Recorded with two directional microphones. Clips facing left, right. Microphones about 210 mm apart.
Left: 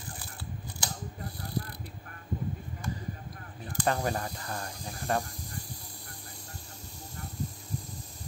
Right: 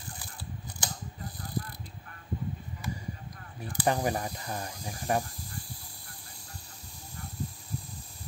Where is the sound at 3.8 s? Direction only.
15° right (ahead or behind).